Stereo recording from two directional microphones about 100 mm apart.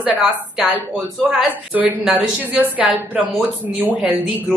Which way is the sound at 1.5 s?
15° right (ahead or behind).